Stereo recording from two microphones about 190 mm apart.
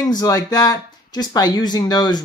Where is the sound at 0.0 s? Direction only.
20° left (ahead or behind).